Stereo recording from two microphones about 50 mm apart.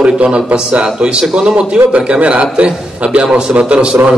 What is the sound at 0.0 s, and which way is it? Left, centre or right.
A man's voice, right.